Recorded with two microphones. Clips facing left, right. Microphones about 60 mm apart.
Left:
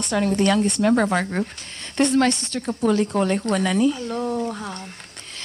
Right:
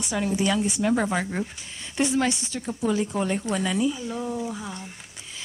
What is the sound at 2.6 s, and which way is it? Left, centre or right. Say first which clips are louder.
Speech: left 5 dB; centre.